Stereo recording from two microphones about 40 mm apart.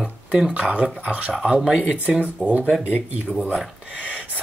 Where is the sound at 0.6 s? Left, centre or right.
Right.